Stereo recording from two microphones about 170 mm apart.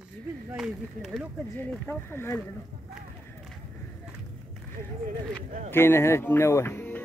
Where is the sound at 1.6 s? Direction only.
15° left (ahead or behind).